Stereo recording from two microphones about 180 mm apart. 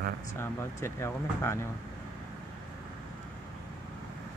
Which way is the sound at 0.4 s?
15° left (ahead or behind).